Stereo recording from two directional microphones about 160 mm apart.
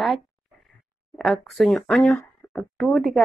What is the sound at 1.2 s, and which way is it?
Speech, centre (ahead or behind).